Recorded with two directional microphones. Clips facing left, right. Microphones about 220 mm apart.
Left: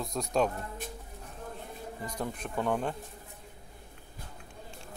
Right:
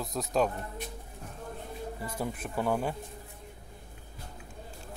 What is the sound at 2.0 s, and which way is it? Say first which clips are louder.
Speech: even; 5° right (ahead or behind).